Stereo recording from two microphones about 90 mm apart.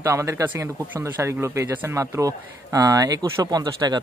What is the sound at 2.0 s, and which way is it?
Speech, 40° right (ahead or behind).